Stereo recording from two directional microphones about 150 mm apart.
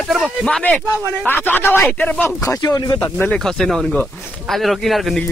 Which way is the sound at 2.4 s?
25° left (ahead or behind).